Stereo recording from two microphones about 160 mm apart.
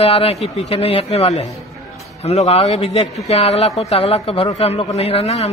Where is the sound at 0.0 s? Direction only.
40° left (ahead or behind).